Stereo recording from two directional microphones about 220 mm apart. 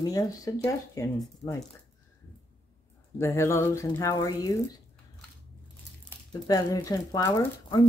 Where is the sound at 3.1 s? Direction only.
10° left (ahead or behind).